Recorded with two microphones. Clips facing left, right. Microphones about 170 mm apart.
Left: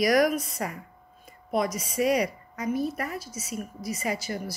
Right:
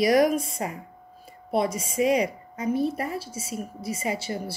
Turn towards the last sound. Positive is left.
turn(degrees=-30)  # may be behind; listen again after turning